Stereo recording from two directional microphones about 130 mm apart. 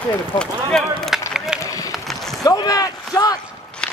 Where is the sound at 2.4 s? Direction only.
30° left (ahead or behind).